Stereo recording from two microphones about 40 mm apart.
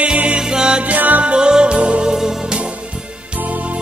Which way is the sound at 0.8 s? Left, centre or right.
Right.